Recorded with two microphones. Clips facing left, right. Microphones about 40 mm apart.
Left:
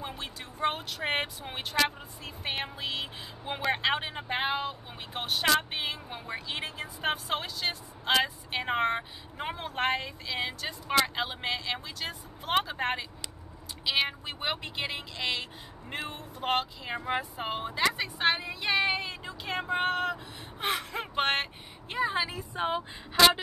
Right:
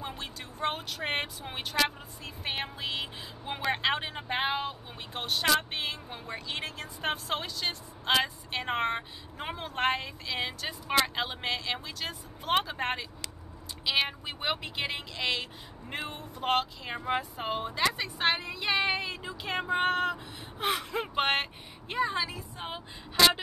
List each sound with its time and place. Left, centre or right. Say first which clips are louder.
0.0 s speech: even; centre
22.1 s speech: left 2 dB; centre
23.1 s speech: left 2 dB; centre